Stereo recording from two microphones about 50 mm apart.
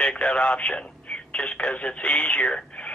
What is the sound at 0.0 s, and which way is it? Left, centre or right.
Speech, left.